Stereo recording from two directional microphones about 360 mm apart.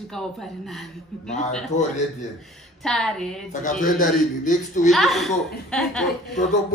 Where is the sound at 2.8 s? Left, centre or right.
Centre.